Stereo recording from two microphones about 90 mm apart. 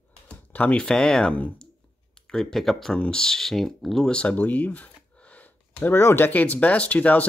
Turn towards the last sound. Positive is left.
turn(degrees=15)  # may be behind; listen again after turning